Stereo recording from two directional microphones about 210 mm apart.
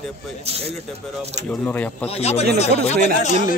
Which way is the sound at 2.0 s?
30° left (ahead or behind).